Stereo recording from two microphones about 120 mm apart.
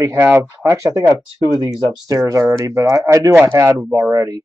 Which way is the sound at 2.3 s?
25° right (ahead or behind).